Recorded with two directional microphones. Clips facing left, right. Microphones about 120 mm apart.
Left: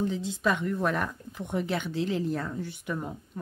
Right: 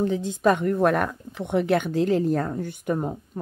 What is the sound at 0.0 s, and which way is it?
Speech, 55° right (ahead or behind).